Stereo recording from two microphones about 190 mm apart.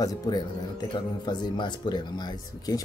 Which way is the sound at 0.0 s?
20° left (ahead or behind).